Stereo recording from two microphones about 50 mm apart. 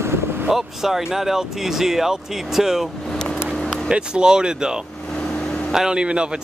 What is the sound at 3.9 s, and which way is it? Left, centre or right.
Speech, centre.